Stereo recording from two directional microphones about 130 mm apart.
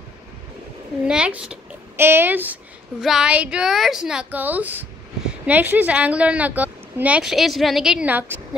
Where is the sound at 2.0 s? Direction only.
15° right (ahead or behind).